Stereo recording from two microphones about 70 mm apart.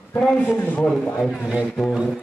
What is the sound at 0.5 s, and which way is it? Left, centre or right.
Speech, left.